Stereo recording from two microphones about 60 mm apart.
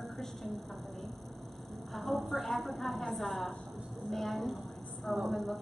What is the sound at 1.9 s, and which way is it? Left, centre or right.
A woman's voice, centre.